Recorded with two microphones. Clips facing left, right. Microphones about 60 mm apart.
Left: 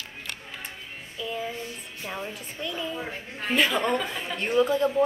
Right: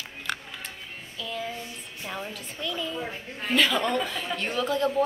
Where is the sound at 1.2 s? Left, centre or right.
Left.